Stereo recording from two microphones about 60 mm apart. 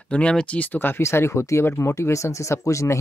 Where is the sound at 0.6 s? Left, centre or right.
Left.